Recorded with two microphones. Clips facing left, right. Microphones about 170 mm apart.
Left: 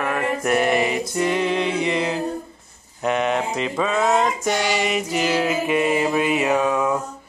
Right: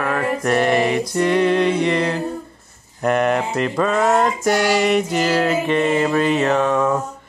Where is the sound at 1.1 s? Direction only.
5° left (ahead or behind).